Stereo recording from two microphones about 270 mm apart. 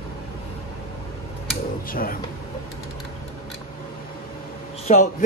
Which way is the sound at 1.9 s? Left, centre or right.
Left.